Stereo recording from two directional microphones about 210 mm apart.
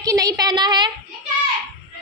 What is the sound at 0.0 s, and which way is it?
Speech, 15° right (ahead or behind).